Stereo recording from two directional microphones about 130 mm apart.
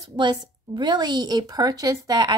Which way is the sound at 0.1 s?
35° right (ahead or behind).